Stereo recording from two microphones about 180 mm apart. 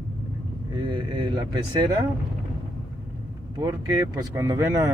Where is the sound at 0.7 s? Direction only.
25° right (ahead or behind).